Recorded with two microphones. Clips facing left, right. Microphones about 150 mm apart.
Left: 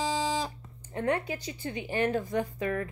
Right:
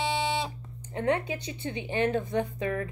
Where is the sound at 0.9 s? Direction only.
20° right (ahead or behind).